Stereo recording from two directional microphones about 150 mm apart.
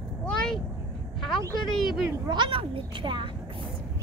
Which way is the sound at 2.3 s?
35° right (ahead or behind).